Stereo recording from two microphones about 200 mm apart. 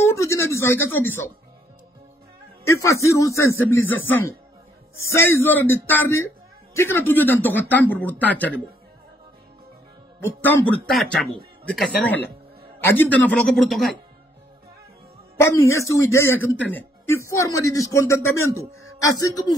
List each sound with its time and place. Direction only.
0.0 s a sound: 15° left (ahead or behind)
2.6 s a man's voice: 15° left (ahead or behind)
10.4 s speech: 5° left (ahead or behind)
15.3 s a man's voice: 15° left (ahead or behind)